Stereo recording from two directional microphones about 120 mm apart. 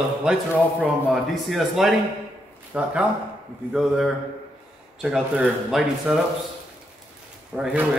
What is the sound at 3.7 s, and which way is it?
A man's voice, centre (ahead or behind).